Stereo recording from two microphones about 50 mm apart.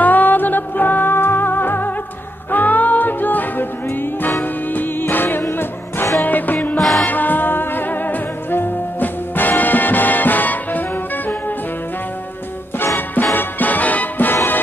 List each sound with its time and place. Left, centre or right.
0.0 s music: left
6.2 s music: left
6.8 s music: centre
7.1 s music: left
12.9 s music: left